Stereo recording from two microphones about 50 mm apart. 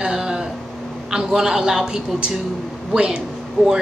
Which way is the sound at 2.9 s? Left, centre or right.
Centre.